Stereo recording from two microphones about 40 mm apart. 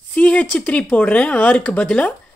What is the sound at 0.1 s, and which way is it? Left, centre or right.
Speech, left.